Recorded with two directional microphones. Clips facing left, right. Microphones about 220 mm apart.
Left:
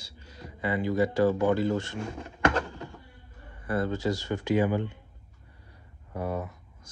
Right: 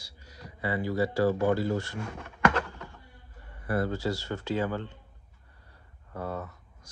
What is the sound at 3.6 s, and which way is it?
Speech, 20° left (ahead or behind).